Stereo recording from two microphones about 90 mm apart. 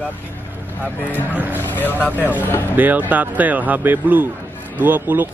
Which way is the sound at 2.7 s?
20° right (ahead or behind).